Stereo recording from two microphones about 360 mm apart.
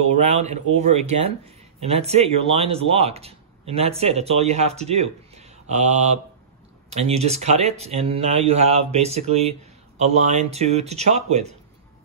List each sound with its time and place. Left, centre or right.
0.1 s speech: centre